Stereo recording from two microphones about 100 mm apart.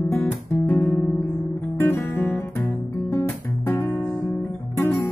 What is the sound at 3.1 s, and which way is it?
Music, 25° left (ahead or behind).